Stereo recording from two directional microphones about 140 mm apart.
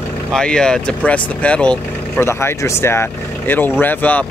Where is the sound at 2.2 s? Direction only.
20° left (ahead or behind).